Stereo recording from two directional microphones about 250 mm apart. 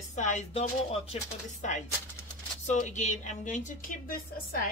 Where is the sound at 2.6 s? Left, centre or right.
Left.